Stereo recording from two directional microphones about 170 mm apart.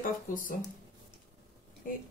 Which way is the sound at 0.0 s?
50° left (ahead or behind).